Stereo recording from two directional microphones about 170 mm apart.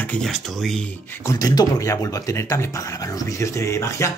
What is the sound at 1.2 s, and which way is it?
Speech, 20° left (ahead or behind).